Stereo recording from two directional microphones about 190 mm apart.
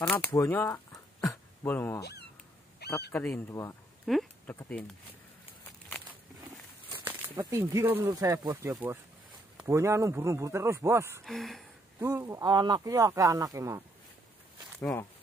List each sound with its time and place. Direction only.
0.0 s speech: 10° left (ahead or behind)
3.1 s speech: 10° left (ahead or behind)
4.0 s a sound: centre (ahead or behind)
4.6 s speech: 5° left (ahead or behind)
7.1 s speech: 10° right (ahead or behind)
11.2 s speech: centre (ahead or behind)
12.0 s speech: 15° right (ahead or behind)
14.8 s speech: 15° left (ahead or behind)